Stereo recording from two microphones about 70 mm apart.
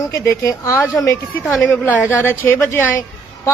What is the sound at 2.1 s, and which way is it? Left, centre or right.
Speech, left.